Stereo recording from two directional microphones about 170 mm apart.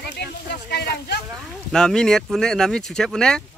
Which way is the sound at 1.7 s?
5° left (ahead or behind).